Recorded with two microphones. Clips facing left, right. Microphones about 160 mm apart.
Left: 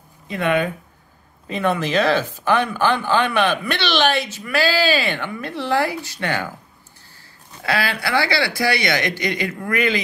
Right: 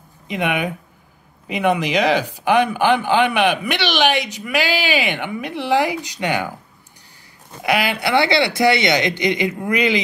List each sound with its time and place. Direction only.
0.3 s speech: 15° right (ahead or behind)
7.6 s speech: 20° right (ahead or behind)